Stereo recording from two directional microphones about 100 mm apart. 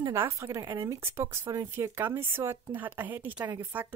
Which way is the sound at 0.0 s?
30° right (ahead or behind).